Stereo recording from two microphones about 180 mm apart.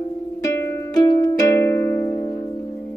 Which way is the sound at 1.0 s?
20° left (ahead or behind).